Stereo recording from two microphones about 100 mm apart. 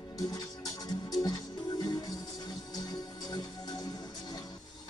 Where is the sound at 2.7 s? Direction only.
40° left (ahead or behind).